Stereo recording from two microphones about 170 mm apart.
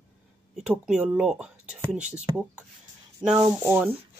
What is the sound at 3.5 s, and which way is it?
Speech, 10° right (ahead or behind).